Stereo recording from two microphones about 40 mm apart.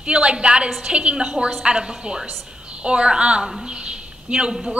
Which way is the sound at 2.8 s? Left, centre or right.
Right.